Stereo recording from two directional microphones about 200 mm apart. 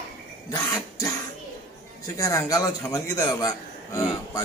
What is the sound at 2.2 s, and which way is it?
A man's voice, 15° left (ahead or behind).